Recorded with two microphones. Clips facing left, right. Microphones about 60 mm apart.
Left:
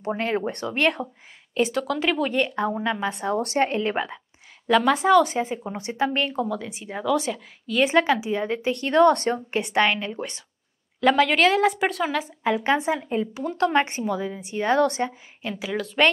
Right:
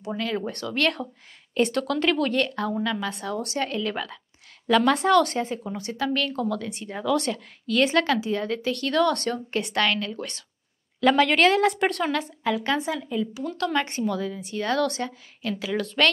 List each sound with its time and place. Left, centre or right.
0.0 s speech: left
0.8 s a woman's voice: centre
3.3 s speech: left
3.6 s a woman's voice: left
4.6 s a woman's voice: centre
5.7 s a woman's voice: left
6.2 s a woman's voice: centre
8.8 s a woman's voice: left
11.0 s a woman's voice: centre
12.8 s speech: left
13.8 s a woman's voice: centre
15.5 s a woman's voice: centre